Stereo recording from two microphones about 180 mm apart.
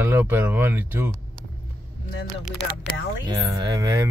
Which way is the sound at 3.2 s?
20° right (ahead or behind).